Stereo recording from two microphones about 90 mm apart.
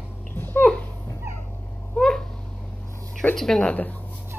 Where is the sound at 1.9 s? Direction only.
5° left (ahead or behind).